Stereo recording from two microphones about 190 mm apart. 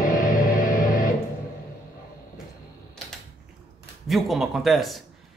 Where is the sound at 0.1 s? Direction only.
45° left (ahead or behind).